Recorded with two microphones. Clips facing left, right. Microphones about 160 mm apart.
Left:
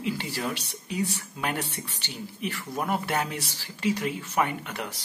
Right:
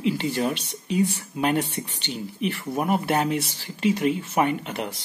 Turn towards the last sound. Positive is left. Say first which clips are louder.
# right 6 dB
turn(degrees=-20)  # may be behind; listen again after turning